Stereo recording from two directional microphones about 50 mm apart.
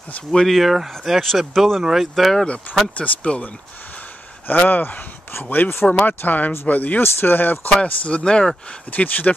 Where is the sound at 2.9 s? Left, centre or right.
Left.